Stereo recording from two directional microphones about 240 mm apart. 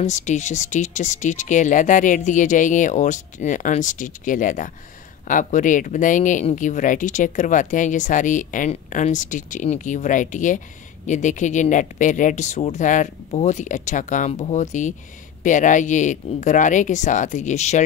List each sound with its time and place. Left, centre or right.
0.0 s speech: left